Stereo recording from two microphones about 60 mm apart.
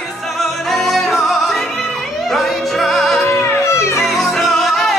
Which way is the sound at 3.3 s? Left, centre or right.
Left.